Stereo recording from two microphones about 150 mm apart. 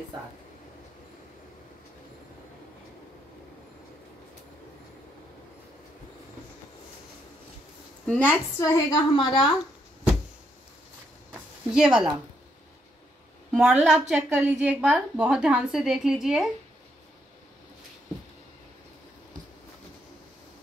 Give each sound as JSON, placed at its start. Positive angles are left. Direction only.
{"t": 8.1, "sound": "a woman's voice", "side_deg": 10}
{"t": 9.1, "sound": "speech", "side_deg": 30}
{"t": 11.7, "sound": "a woman's voice", "side_deg": -5}
{"t": 13.5, "sound": "a woman's voice", "side_deg": -5}